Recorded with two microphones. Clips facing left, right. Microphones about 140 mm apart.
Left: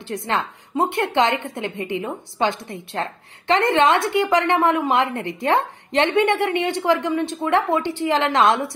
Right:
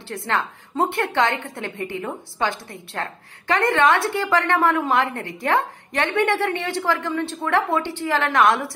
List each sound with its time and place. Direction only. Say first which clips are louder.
0.1 s a woman's voice: left 1 dB; 20° left (ahead or behind)